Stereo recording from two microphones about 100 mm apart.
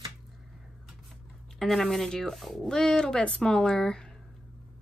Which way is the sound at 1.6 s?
5° left (ahead or behind).